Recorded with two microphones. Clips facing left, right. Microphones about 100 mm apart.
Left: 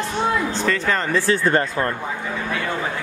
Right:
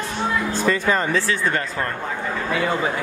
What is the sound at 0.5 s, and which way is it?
Speech, 10° right (ahead or behind).